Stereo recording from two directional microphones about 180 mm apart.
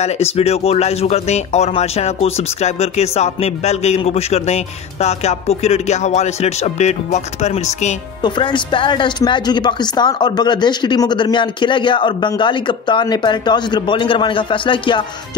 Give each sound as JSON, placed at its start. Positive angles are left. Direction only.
{"t": 0.0, "sound": "speech", "side_deg": 35}
{"t": 8.2, "sound": "speech", "side_deg": 25}